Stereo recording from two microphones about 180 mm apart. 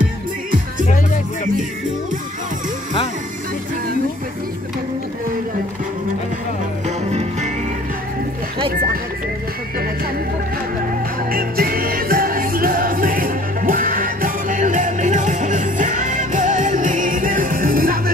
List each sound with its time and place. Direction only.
11.3 s music: 55° right (ahead or behind)